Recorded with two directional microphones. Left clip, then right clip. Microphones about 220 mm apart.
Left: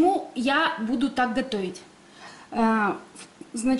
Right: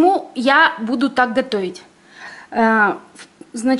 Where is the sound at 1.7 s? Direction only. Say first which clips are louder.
Right 6 dB; centre (ahead or behind).